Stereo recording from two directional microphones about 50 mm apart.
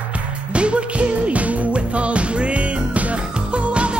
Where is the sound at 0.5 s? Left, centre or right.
Right.